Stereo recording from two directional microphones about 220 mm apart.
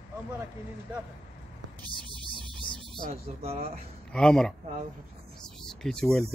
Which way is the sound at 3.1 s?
25° right (ahead or behind).